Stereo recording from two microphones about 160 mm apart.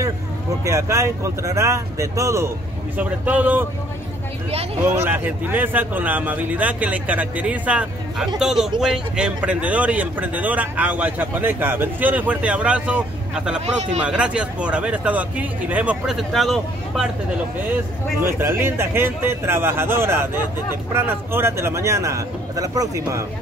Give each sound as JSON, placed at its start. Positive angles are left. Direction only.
{"t": 0.7, "sound": "speech", "side_deg": -20}
{"t": 4.9, "sound": "speech", "side_deg": -15}
{"t": 13.7, "sound": "speech", "side_deg": -45}
{"t": 14.0, "sound": "speech", "side_deg": -5}
{"t": 18.2, "sound": "speech", "side_deg": -15}